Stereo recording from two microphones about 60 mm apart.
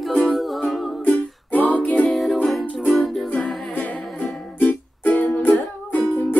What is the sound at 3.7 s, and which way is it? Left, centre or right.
Music, left.